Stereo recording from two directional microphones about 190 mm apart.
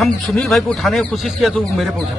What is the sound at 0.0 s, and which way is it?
Speech, 5° left (ahead or behind).